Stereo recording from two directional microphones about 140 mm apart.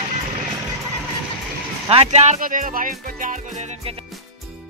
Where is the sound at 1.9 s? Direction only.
50° right (ahead or behind); by 3.3 s 70° right (ahead or behind).